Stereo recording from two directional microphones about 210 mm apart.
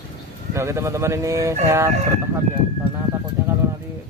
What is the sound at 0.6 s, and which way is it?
Speech, 15° right (ahead or behind).